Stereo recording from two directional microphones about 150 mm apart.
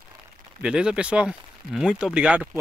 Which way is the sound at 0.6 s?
5° right (ahead or behind).